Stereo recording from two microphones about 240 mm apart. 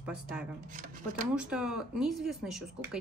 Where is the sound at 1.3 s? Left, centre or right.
Centre.